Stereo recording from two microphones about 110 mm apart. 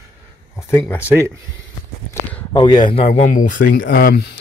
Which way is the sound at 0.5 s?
20° left (ahead or behind).